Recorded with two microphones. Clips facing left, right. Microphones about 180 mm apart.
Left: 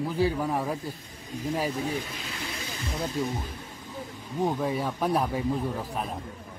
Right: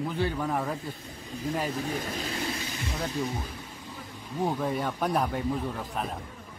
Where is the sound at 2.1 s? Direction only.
40° right (ahead or behind).